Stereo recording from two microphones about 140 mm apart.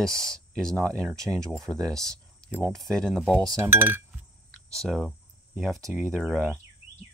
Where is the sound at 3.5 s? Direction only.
15° right (ahead or behind).